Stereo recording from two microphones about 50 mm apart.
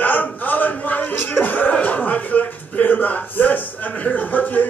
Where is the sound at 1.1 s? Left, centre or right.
Left.